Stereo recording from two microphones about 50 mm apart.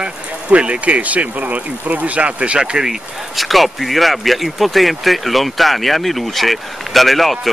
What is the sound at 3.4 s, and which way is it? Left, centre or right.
Speech, centre.